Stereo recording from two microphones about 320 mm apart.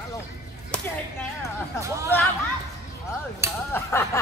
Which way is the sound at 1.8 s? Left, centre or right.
Centre.